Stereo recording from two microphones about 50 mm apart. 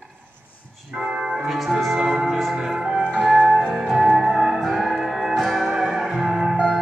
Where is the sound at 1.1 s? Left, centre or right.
Centre.